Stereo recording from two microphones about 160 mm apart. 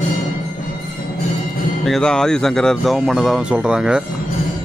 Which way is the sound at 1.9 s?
5° left (ahead or behind).